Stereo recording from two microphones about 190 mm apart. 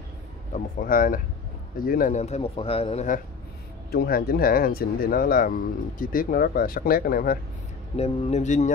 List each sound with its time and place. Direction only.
0.7 s speech: 50° left (ahead or behind)
3.9 s speech: 50° left (ahead or behind)
7.9 s speech: 35° left (ahead or behind)